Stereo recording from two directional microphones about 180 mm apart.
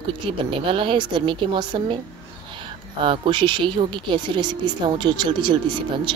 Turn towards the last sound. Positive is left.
turn(degrees=-25)  # may be behind; listen again after turning